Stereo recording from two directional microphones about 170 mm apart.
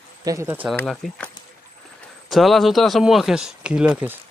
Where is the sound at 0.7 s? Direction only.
Centre (ahead or behind).